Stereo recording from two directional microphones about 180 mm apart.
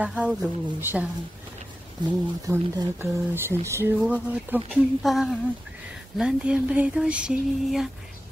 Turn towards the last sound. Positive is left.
turn(degrees=-5)  # may be behind; listen again after turning